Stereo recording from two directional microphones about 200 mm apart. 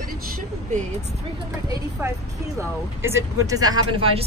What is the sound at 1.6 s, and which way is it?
Speech, 20° right (ahead or behind).